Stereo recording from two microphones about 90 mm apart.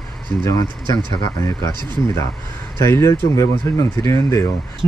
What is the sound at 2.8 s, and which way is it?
Speech, 30° left (ahead or behind).